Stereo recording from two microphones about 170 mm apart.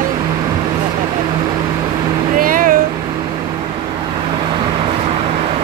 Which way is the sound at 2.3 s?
55° right (ahead or behind).